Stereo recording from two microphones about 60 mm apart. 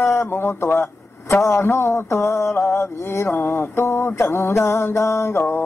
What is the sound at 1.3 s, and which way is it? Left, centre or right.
Mantra, left.